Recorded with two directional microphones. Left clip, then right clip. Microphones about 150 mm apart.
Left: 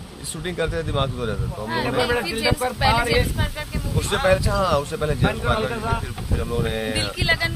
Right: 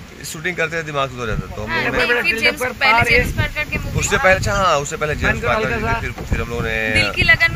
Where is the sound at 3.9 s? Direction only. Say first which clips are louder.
Right 5 dB; 10° right (ahead or behind).